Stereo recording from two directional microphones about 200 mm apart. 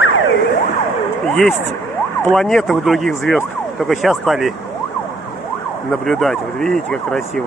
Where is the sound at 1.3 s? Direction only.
5° left (ahead or behind).